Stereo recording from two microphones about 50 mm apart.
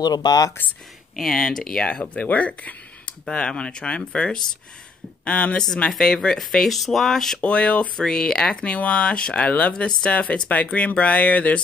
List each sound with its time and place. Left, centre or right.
0.6 s speech: left
1.1 s speech: centre
2.1 s speech: left
5.9 s speech: centre
7.4 s speech: left
7.9 s speech: centre; by 11.6 s left